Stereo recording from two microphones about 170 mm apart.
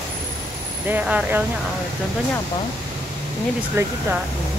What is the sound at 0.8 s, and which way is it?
Speech, 10° right (ahead or behind).